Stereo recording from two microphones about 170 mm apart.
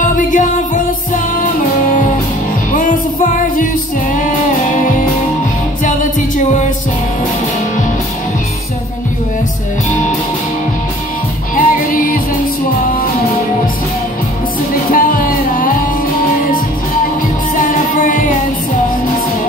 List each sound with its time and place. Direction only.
0.1 s music: 50° left (ahead or behind)
11.5 s music: 55° left (ahead or behind)
14.9 s music: 55° left (ahead or behind)
17.6 s music: 50° left (ahead or behind)